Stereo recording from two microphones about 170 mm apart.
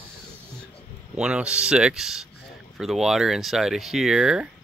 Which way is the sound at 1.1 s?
5° right (ahead or behind).